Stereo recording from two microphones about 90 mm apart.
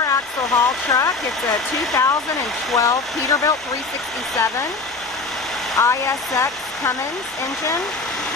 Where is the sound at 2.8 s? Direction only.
40° left (ahead or behind).